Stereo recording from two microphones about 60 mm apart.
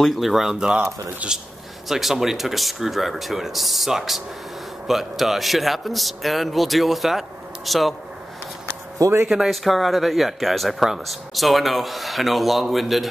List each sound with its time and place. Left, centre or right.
0.0 s speech: centre; by 1.4 s right
1.9 s speech: centre
9.3 s speech: centre